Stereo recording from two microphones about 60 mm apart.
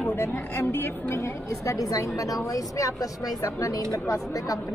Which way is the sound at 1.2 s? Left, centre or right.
Left.